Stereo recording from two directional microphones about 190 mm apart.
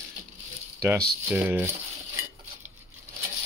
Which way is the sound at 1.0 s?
5° right (ahead or behind).